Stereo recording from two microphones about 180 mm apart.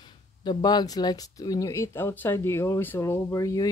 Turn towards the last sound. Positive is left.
turn(degrees=15)  # may be behind; listen again after turning